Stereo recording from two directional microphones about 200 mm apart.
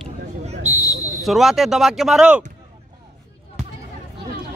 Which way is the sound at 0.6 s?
35° right (ahead or behind).